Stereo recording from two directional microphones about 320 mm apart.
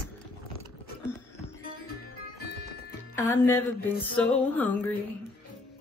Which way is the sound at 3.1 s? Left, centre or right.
Centre.